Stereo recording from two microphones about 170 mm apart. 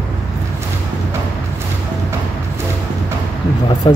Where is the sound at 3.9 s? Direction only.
30° left (ahead or behind).